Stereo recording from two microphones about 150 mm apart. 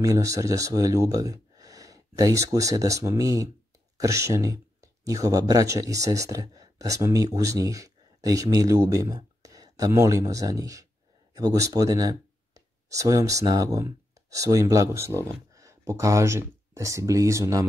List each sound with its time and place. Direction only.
0.0 s speech: 20° right (ahead or behind)